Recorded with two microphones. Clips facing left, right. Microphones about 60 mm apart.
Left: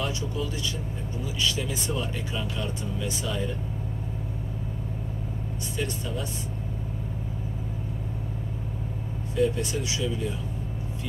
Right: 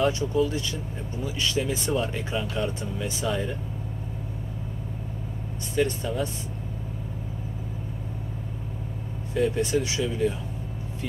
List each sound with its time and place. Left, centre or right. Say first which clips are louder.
0.0 s speech: right 7 dB; right
5.8 s speech: right 7 dB; right
9.3 s speech: right 2 dB; right